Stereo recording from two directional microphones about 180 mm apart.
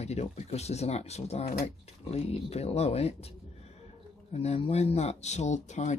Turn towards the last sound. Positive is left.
turn(degrees=40)  # may be behind; listen again after turning